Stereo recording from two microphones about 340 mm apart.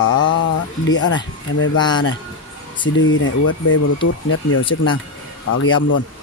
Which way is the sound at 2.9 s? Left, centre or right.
Left.